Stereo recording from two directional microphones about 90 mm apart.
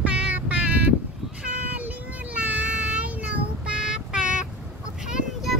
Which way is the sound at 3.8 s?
10° right (ahead or behind).